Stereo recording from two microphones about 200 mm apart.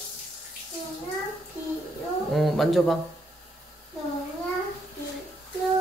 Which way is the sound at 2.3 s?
Centre (ahead or behind).